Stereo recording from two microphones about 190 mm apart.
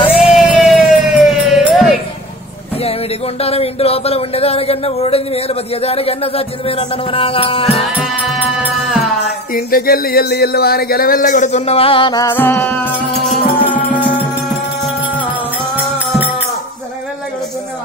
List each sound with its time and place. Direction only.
0.2 s emergency vehicle: centre (ahead or behind)
2.8 s speech: 30° left (ahead or behind)
7.8 s music: centre (ahead or behind)
9.5 s speech: 50° left (ahead or behind); by 13.7 s 5° left (ahead or behind)